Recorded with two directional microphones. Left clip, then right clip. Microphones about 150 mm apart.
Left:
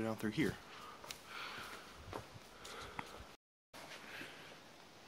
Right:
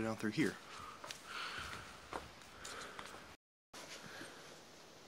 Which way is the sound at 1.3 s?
5° right (ahead or behind).